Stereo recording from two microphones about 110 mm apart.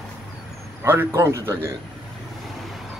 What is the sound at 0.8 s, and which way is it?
Speech, 20° right (ahead or behind).